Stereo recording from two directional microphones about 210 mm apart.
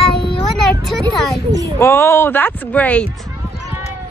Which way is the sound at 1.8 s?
10° left (ahead or behind).